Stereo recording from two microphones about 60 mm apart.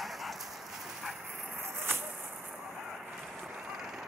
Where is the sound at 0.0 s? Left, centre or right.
Centre.